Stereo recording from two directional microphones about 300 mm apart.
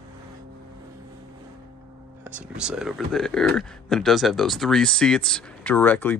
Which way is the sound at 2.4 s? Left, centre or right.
Centre.